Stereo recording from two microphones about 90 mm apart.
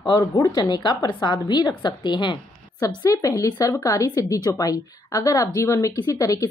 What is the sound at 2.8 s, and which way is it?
Speech, 40° left (ahead or behind).